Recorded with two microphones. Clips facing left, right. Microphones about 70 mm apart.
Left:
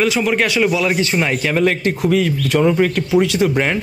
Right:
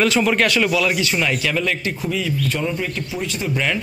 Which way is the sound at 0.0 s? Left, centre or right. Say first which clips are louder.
Left 1 dB; centre.